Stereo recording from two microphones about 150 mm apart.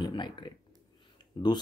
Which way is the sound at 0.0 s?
30° left (ahead or behind).